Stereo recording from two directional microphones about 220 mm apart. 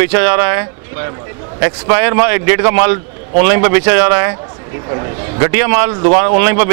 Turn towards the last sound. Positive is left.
turn(degrees=-10)  # may be behind; listen again after turning